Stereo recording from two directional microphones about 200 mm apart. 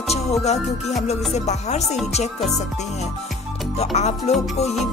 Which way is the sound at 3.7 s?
35° left (ahead or behind).